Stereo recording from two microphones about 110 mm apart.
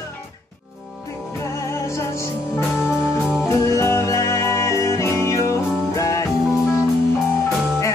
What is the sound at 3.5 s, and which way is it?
Music, 25° left (ahead or behind).